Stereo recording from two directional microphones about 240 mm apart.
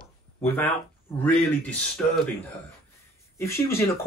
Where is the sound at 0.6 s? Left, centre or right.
Centre.